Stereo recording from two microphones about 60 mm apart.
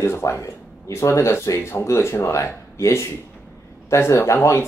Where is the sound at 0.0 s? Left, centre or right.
Left.